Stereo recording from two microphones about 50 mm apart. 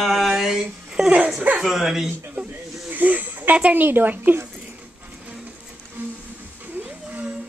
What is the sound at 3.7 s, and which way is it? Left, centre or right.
Speech, right.